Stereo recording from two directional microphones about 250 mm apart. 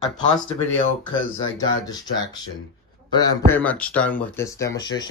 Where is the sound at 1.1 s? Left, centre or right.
Centre.